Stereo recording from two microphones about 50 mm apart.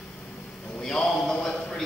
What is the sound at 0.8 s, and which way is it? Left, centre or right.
Speech, centre.